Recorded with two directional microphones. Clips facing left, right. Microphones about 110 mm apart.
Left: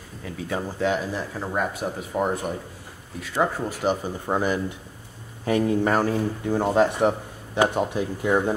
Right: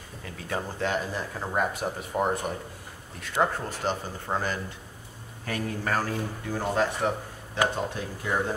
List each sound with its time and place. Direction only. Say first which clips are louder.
0.2 s speech: left 4 dB; 5° left (ahead or behind)
3.5 s speech: left 5 dB; 10° left (ahead or behind)